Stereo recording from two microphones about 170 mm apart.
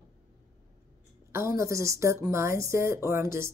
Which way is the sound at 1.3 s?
15° right (ahead or behind).